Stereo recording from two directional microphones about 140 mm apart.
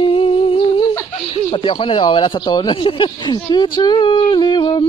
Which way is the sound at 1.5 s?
40° left (ahead or behind).